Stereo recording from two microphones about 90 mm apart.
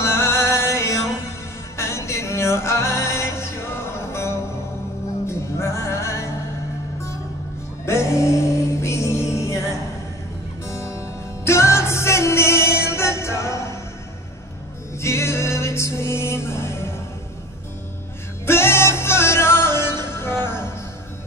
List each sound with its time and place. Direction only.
0.0 s music: 30° left (ahead or behind)
7.8 s music: 30° left (ahead or behind)
10.7 s music: 30° left (ahead or behind)
15.0 s music: 30° left (ahead or behind)
18.4 s music: 25° left (ahead or behind)